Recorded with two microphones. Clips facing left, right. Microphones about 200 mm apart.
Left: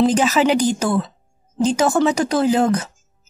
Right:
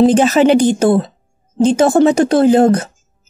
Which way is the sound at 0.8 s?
35° right (ahead or behind).